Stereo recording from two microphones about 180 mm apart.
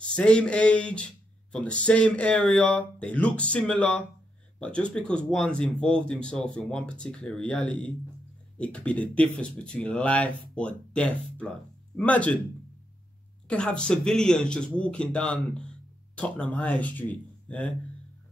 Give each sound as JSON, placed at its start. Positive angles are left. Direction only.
{"t": 0.1, "sound": "speech", "side_deg": 5}
{"t": 13.5, "sound": "speech", "side_deg": 5}